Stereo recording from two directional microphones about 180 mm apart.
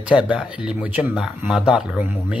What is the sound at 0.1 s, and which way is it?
Speech, 5° right (ahead or behind).